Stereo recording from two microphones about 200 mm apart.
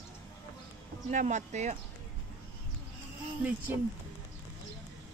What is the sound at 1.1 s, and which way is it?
Speech, 35° right (ahead or behind).